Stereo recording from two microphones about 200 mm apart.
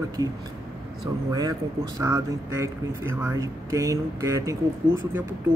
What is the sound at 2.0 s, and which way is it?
Speech, 15° right (ahead or behind).